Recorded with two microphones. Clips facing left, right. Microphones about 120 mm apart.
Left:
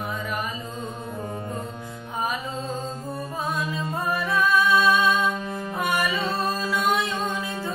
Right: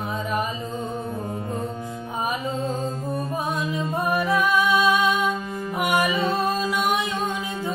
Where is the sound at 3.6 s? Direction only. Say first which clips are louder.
Right 3 dB; 20° right (ahead or behind).